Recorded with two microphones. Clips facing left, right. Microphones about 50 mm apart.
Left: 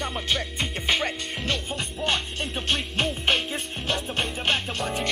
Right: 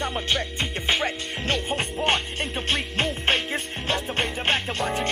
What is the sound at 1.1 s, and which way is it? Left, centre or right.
Speech, right.